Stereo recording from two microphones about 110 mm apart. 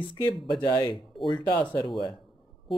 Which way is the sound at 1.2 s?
45° left (ahead or behind).